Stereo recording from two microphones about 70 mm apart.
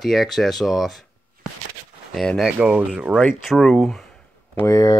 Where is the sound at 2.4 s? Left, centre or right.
Centre.